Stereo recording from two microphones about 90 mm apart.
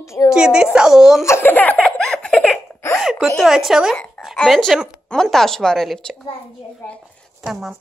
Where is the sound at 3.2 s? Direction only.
Centre (ahead or behind).